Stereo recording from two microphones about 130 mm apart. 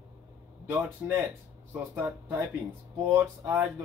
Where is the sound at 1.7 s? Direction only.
20° right (ahead or behind).